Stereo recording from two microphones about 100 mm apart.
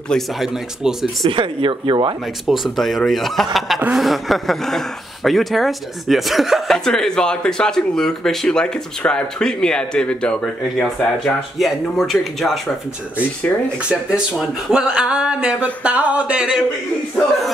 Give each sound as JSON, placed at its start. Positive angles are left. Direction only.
{"t": 0.1, "sound": "speech", "side_deg": 0}
{"t": 1.3, "sound": "speech", "side_deg": -55}
{"t": 2.4, "sound": "speech", "side_deg": 0}
{"t": 13.8, "sound": "speech", "side_deg": -10}